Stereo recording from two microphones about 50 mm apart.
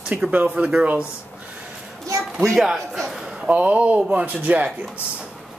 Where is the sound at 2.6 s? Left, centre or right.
Centre.